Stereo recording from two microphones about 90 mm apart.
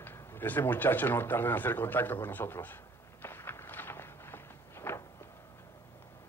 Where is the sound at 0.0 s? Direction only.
25° left (ahead or behind).